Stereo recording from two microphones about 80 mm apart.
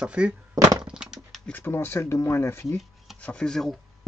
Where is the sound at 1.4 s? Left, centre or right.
Left.